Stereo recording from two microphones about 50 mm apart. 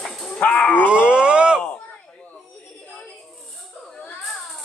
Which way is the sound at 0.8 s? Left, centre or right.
Right.